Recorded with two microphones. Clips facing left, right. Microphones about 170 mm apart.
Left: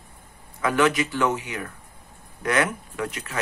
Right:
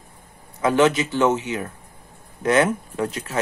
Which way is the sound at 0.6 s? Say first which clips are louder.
Right 4 dB; 25° right (ahead or behind).